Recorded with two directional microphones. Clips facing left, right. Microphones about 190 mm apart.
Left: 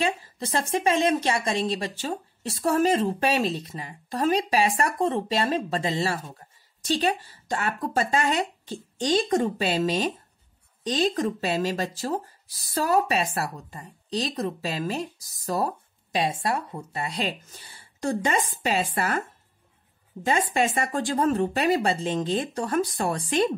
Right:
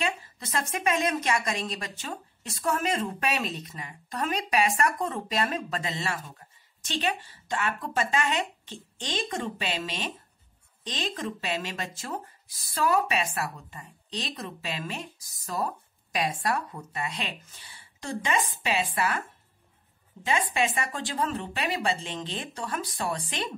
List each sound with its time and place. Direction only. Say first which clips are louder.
0.0 s a woman's voice: left 5 dB; 35° left (ahead or behind)
20.2 s speech: left 4 dB; 45° left (ahead or behind)